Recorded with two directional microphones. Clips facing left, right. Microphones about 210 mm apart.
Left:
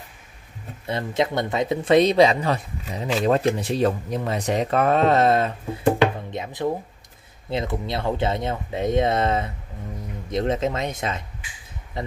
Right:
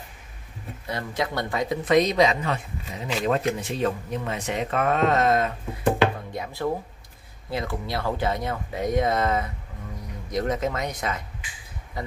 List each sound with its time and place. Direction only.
0.8 s speech: 25° left (ahead or behind)
5.9 s music: 20° left (ahead or behind)
7.4 s speech: 20° left (ahead or behind)